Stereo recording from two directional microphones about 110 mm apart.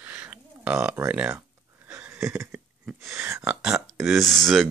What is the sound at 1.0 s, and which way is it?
Speech, 15° right (ahead or behind).